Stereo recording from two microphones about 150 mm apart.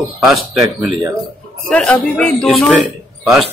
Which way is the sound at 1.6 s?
5° left (ahead or behind).